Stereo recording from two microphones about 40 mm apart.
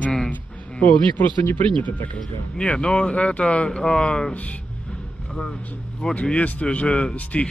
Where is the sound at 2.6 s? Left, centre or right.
Left.